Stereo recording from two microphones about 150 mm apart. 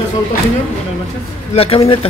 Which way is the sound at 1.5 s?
40° left (ahead or behind).